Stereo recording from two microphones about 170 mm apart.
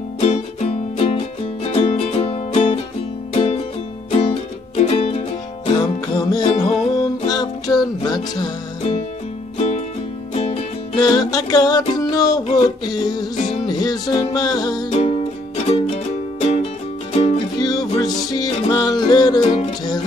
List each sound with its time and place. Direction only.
0.2 s music: 40° left (ahead or behind)
5.7 s music: 25° left (ahead or behind)
9.6 s music: 40° left (ahead or behind)
11.0 s music: 25° left (ahead or behind)
14.9 s music: 35° left (ahead or behind)
17.6 s music: 20° left (ahead or behind)